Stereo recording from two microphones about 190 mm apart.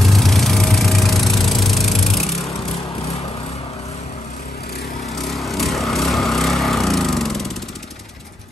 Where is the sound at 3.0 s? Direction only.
35° left (ahead or behind).